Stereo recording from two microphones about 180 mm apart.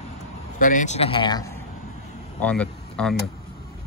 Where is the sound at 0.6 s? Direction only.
45° left (ahead or behind); by 1.6 s 20° left (ahead or behind).